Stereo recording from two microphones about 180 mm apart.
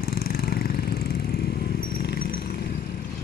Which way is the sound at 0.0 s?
55° left (ahead or behind).